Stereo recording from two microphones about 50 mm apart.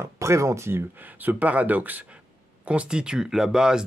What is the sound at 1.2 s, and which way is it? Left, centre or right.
Speech, right.